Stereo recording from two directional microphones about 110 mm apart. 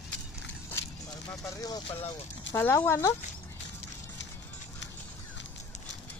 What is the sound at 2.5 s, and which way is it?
Speech, 20° left (ahead or behind).